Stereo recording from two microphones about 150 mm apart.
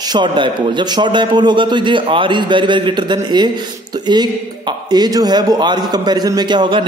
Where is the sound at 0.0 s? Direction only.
30° right (ahead or behind).